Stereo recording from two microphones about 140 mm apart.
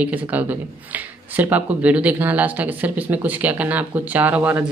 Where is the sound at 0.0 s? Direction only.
10° right (ahead or behind).